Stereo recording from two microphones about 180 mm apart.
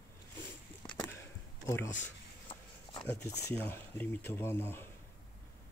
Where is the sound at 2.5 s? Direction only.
30° left (ahead or behind).